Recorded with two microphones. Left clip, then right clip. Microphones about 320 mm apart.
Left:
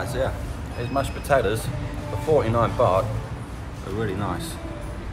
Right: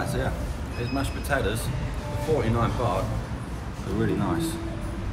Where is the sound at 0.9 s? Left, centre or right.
Centre.